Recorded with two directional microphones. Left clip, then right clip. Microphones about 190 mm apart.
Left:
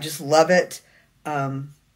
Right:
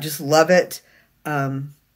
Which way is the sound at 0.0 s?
40° right (ahead or behind).